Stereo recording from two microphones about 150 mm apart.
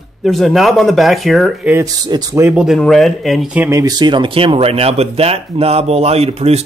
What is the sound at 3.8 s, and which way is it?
Speech, 30° right (ahead or behind).